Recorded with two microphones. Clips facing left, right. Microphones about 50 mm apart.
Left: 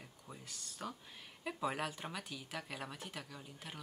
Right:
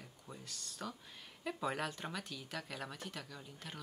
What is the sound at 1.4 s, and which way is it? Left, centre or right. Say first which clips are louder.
Speech: even; centre.